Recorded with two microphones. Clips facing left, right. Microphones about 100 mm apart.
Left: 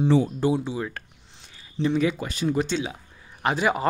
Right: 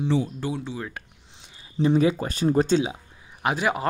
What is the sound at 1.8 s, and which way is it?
Speech, 35° right (ahead or behind).